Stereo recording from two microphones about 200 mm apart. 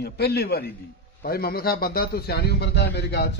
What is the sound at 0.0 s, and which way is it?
A man's voice, 55° left (ahead or behind).